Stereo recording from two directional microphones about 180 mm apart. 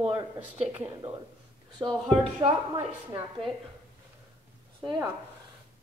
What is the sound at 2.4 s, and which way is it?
Speech, 30° right (ahead or behind).